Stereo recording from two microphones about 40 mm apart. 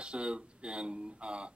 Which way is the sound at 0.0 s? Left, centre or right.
Right.